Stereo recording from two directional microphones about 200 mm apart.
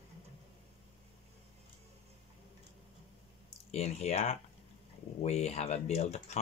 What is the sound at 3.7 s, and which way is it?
Speech, 30° left (ahead or behind).